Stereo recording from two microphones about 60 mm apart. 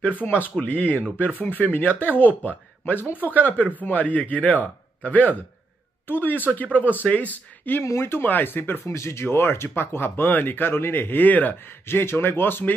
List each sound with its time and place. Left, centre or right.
0.2 s speech: centre
0.6 s a man's voice: left
3.2 s speech: right
3.4 s a man's voice: left
7.8 s speech: left
8.3 s speech: left
8.8 s speech: left
11.9 s speech: left